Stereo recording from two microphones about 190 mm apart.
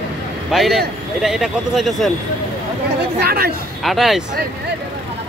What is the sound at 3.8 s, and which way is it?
Speech, centre (ahead or behind).